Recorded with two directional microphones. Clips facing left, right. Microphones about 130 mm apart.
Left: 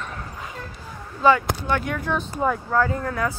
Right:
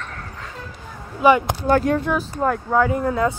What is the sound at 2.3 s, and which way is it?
Speech, 5° left (ahead or behind).